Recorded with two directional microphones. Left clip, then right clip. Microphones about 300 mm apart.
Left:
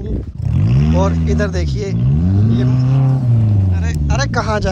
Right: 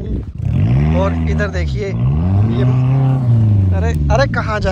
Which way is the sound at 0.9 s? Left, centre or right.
Centre.